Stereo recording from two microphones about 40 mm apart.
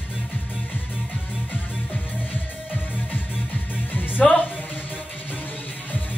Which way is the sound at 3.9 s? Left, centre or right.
Left.